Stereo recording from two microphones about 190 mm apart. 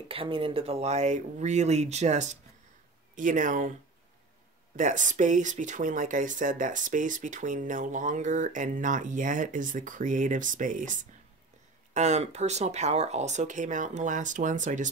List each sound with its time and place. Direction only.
0.1 s speech: 30° right (ahead or behind)
4.7 s speech: 40° right (ahead or behind)
11.9 s speech: 35° right (ahead or behind)